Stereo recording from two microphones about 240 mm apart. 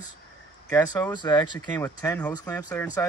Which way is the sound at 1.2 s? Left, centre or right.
Centre.